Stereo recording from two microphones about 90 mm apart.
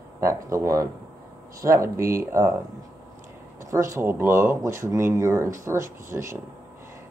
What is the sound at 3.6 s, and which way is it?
Speech, 35° right (ahead or behind).